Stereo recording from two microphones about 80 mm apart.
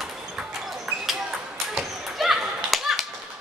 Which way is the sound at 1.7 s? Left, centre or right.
Centre.